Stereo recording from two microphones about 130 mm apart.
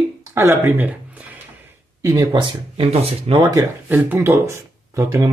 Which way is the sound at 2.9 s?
50° right (ahead or behind).